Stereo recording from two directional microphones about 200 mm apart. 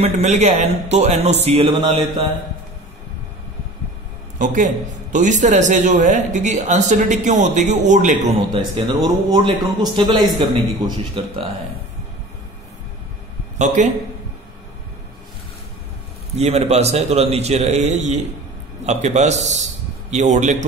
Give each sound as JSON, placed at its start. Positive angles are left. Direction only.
{"t": 0.0, "sound": "a man's voice", "side_deg": -35}
{"t": 4.4, "sound": "a man's voice", "side_deg": -40}
{"t": 8.5, "sound": "speech", "side_deg": -25}
{"t": 13.8, "sound": "a man's voice", "side_deg": -35}
{"t": 16.3, "sound": "a man's voice", "side_deg": -30}